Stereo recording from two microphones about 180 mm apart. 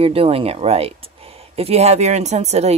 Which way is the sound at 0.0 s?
35° right (ahead or behind).